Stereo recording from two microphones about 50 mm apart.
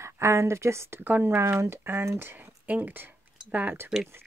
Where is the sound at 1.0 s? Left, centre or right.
Right.